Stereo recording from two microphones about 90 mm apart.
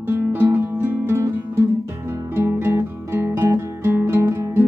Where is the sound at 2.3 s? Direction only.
25° right (ahead or behind).